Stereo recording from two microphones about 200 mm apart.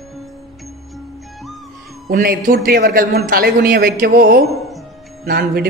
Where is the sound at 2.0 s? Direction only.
50° right (ahead or behind).